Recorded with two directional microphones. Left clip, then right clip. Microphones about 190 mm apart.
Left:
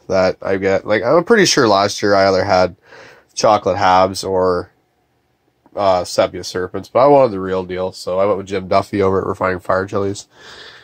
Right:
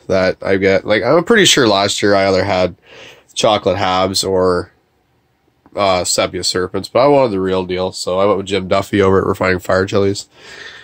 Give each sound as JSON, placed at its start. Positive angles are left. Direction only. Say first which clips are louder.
{"t": 0.0, "sound": "speech", "louder": "right 1 dB", "side_deg": -20}
{"t": 1.9, "sound": "speech", "louder": "even", "side_deg": -30}
{"t": 2.9, "sound": "a sound", "louder": "right 5 dB", "side_deg": -25}
{"t": 3.6, "sound": "speech", "louder": "left 2 dB", "side_deg": -15}
{"t": 4.4, "sound": "speech", "louder": "even", "side_deg": -30}
{"t": 5.8, "sound": "speech", "louder": "even", "side_deg": -15}
{"t": 10.4, "sound": "speech", "louder": "right 4 dB", "side_deg": -5}